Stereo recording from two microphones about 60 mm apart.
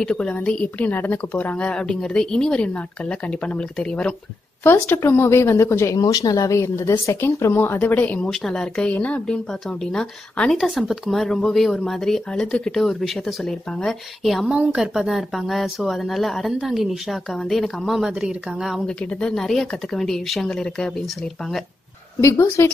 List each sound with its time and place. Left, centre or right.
0.0 s speech: centre
0.7 s a woman's voice: left
4.7 s speech: left
5.9 s speech: left
7.5 s speech: left
7.9 s a woman's voice: left
8.3 s speech: centre
8.9 s a woman's voice: left
9.5 s speech: centre
10.5 s speech: centre
12.7 s speech: centre
14.5 s speech: centre
18.9 s speech: centre
22.2 s speech: left